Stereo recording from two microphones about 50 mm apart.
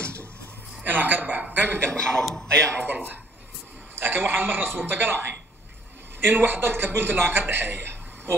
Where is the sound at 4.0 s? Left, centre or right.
Right.